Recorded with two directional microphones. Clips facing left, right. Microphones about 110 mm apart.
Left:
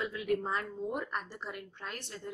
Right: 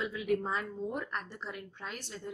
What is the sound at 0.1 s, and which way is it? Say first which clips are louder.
A woman's voice: even; centre (ahead or behind).